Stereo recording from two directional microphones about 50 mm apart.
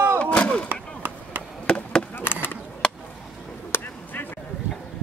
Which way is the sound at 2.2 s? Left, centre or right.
Left.